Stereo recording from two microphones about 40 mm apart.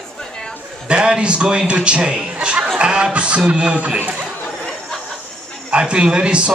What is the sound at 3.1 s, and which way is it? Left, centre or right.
Speech, right.